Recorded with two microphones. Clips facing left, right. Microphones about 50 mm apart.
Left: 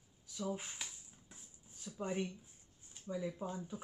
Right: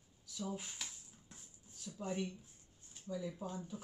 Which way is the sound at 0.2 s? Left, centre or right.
Left.